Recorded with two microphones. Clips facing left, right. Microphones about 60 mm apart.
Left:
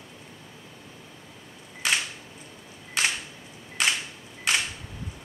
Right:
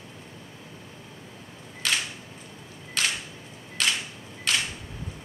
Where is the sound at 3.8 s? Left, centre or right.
Left.